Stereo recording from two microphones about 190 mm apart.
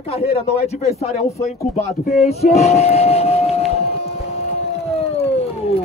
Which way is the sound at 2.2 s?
35° left (ahead or behind).